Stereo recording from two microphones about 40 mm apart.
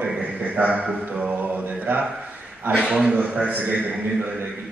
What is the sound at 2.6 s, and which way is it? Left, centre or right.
Speech, right.